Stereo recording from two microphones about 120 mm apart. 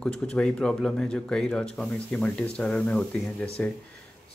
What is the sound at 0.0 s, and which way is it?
Speech, 5° left (ahead or behind).